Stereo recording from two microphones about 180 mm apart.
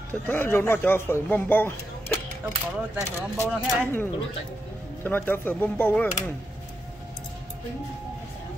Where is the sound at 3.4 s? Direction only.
10° left (ahead or behind).